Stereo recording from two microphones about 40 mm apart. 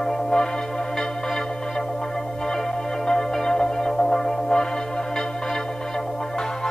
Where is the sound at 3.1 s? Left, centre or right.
Centre.